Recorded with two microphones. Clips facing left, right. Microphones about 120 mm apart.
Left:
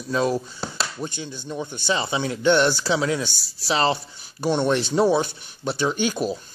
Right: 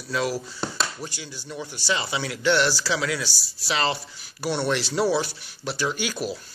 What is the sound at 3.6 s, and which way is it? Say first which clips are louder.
Speech: left 4 dB; 30° left (ahead or behind).